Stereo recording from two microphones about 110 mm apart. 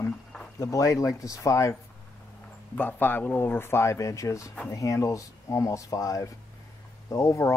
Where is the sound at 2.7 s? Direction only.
20° left (ahead or behind).